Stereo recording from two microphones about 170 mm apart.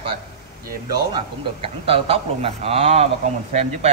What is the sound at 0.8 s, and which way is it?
Speech, 25° right (ahead or behind).